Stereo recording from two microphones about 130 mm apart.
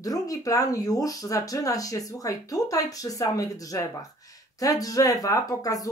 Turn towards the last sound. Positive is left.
turn(degrees=25)  # may be behind; listen again after turning